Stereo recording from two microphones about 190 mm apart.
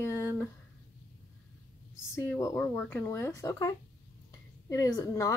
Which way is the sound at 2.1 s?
15° left (ahead or behind).